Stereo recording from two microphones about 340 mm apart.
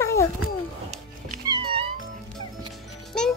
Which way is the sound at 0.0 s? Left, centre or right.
Centre.